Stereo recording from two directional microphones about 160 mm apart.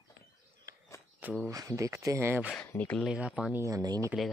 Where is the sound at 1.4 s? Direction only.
20° right (ahead or behind).